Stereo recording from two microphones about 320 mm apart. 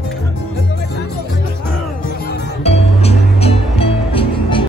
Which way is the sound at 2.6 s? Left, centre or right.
Centre.